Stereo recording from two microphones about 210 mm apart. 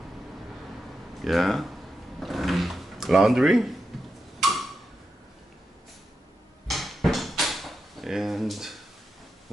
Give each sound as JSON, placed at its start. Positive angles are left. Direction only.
{"t": 1.2, "sound": "speech", "side_deg": 0}
{"t": 2.1, "sound": "a sound", "side_deg": 0}
{"t": 3.9, "sound": "tick-tock", "side_deg": 0}
{"t": 6.7, "sound": "drawer open or close", "side_deg": 0}